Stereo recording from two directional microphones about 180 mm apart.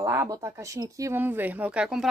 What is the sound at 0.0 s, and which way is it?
Speech, 15° right (ahead or behind).